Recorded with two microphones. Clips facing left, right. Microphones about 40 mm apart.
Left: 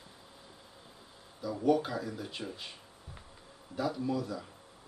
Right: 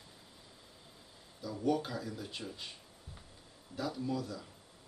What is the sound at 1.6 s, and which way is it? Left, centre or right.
Speech, centre.